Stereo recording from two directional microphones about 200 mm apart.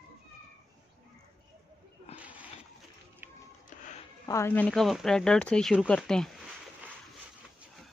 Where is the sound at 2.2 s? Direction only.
5° right (ahead or behind).